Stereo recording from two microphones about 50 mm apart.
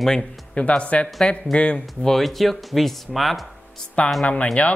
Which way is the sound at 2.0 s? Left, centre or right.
Centre.